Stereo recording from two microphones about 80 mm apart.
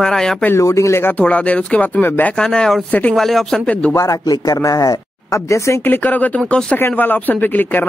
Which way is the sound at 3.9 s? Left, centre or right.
Left.